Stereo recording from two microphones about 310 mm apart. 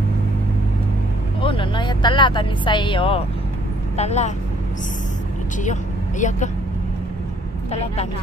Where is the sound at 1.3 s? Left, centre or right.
Centre.